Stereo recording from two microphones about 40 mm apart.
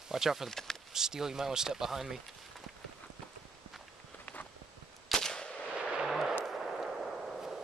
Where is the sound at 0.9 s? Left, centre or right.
Centre.